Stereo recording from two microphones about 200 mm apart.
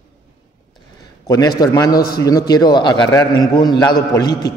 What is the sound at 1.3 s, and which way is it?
A man's voice, 20° left (ahead or behind).